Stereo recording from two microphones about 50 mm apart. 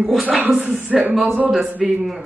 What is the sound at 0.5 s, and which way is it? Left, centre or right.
A woman's voice, right.